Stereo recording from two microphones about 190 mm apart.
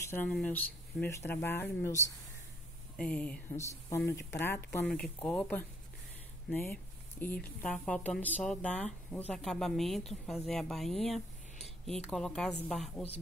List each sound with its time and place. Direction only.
0.0 s speech: 10° left (ahead or behind)